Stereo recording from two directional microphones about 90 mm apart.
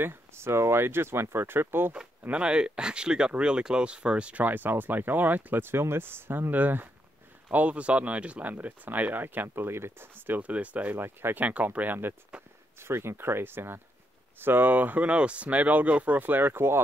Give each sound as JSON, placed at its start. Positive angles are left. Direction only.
{"t": 0.0, "sound": "speech", "side_deg": -25}
{"t": 2.2, "sound": "speech", "side_deg": -10}